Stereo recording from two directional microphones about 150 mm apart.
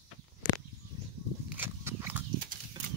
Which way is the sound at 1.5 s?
15° right (ahead or behind).